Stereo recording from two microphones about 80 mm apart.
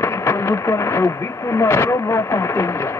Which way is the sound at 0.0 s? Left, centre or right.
Left.